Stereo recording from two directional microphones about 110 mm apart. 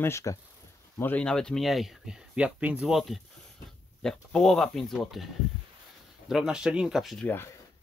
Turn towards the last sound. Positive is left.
turn(degrees=0)  # may be behind; listen again after turning